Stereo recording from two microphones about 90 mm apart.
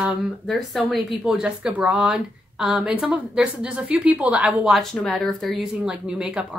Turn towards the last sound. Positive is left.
turn(degrees=-10)  # may be behind; listen again after turning